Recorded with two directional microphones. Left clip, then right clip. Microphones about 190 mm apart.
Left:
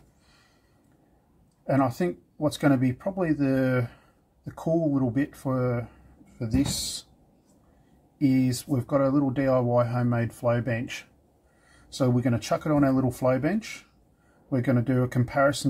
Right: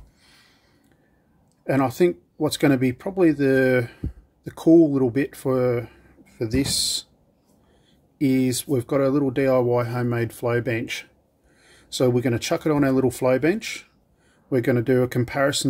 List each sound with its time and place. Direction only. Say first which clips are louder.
1.7 s speech: right 5 dB; 60° right (ahead or behind)
8.2 s speech: right 3 dB; 60° right (ahead or behind)